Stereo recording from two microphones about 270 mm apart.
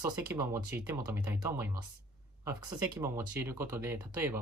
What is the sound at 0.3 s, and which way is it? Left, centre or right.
Speech, centre.